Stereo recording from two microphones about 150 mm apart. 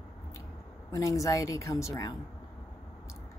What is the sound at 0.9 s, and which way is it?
Speech, 20° left (ahead or behind).